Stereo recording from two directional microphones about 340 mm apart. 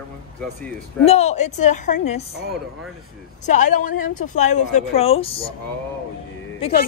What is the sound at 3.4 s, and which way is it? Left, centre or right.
A woman's voice, left.